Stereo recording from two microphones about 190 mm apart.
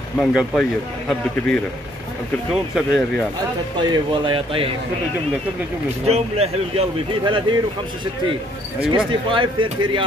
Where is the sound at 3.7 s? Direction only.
25° right (ahead or behind).